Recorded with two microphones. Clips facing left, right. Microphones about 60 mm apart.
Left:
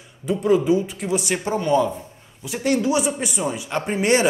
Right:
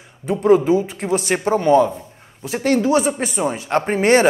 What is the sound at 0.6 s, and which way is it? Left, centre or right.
Speech, right.